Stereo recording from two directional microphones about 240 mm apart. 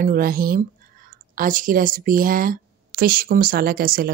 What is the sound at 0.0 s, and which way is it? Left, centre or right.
Speech, right.